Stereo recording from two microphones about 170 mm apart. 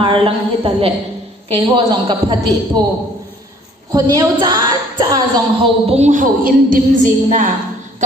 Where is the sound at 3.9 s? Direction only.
25° right (ahead or behind).